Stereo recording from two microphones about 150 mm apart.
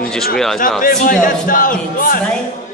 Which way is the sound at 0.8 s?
65° left (ahead or behind).